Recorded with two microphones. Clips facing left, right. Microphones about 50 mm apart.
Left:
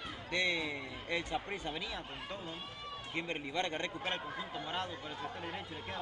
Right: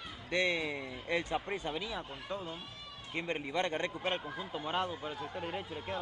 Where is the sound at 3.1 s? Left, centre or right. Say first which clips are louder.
Right 3 dB; right.